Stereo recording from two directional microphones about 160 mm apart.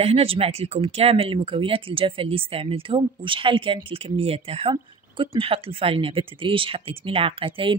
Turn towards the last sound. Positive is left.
turn(degrees=-35)  # may be behind; listen again after turning